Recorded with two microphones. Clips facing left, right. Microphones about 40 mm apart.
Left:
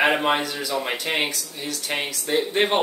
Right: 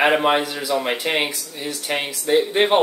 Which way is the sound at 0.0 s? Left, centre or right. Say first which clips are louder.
Right 3 dB; centre.